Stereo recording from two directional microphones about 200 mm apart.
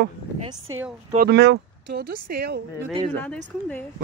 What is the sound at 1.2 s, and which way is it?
Speech, 55° right (ahead or behind).